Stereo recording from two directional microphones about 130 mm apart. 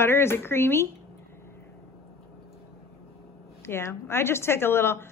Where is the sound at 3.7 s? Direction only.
20° left (ahead or behind).